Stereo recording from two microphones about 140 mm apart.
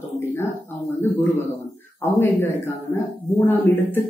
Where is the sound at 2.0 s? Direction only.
15° left (ahead or behind).